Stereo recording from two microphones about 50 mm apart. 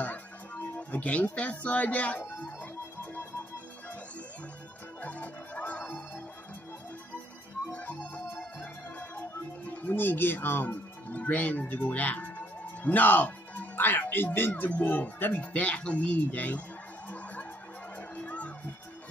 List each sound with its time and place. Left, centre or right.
0.0 s music: left
3.0 s music: left
5.0 s music: left
7.7 s music: left
9.7 s music: left
9.9 s speech: left
18.1 s music: left